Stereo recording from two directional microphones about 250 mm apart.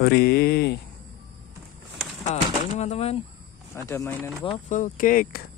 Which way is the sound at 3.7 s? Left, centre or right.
Centre.